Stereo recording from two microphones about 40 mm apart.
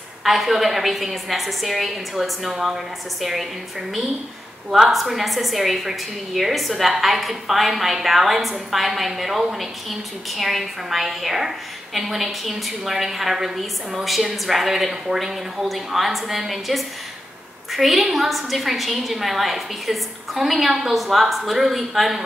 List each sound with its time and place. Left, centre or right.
0.2 s a woman's voice: centre
4.6 s speech: centre
4.9 s a woman's voice: centre